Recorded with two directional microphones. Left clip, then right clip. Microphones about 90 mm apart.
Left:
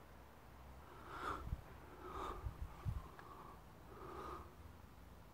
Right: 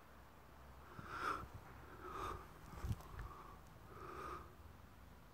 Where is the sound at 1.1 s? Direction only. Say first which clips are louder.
Right 3 dB; 5° right (ahead or behind).